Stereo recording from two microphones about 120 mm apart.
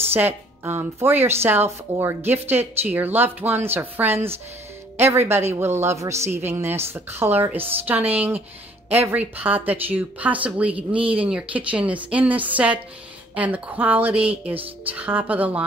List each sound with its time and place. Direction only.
0.1 s a woman's voice: 20° right (ahead or behind)